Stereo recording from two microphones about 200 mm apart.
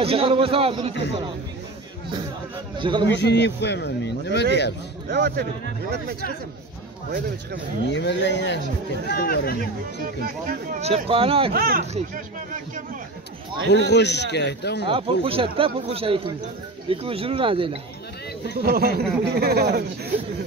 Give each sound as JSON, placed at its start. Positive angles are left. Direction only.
{"t": 0.0, "sound": "speech", "side_deg": -30}
{"t": 2.8, "sound": "speech", "side_deg": -25}
{"t": 3.2, "sound": "speech", "side_deg": 60}
{"t": 5.1, "sound": "a man's voice", "side_deg": -55}
{"t": 7.9, "sound": "speech", "side_deg": 60}
{"t": 9.0, "sound": "speech", "side_deg": 50}
{"t": 10.2, "sound": "a man's voice", "side_deg": -45}
{"t": 10.8, "sound": "speech", "side_deg": -30}
{"t": 11.5, "sound": "a man's voice", "side_deg": -45}
{"t": 13.7, "sound": "speech", "side_deg": 60}
{"t": 14.9, "sound": "speech", "side_deg": -25}
{"t": 18.6, "sound": "a man's voice", "side_deg": -50}